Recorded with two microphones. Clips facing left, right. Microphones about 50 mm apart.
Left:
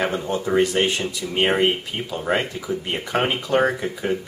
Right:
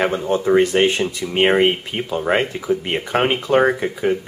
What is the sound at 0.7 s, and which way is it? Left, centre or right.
Speech, right.